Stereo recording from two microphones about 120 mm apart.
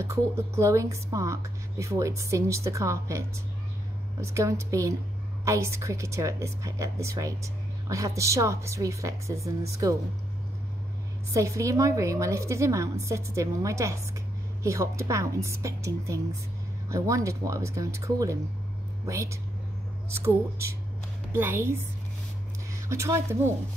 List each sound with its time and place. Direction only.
0.0 s a woman's voice: 25° right (ahead or behind)
11.3 s a woman's voice: 25° right (ahead or behind)
22.8 s a woman's voice: 25° right (ahead or behind)